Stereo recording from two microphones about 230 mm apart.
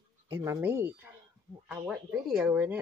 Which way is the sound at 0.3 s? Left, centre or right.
Centre.